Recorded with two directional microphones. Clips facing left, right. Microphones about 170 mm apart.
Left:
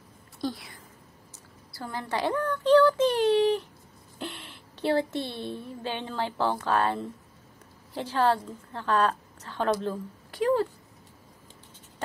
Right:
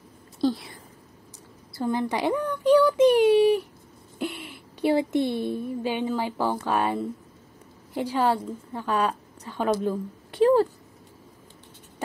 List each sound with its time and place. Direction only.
0.4 s a sound: 30° right (ahead or behind)
1.7 s a child's voice: 20° right (ahead or behind)
10.3 s speech: 35° right (ahead or behind)